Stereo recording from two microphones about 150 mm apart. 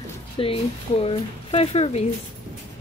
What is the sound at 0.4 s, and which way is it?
Speech, 40° left (ahead or behind).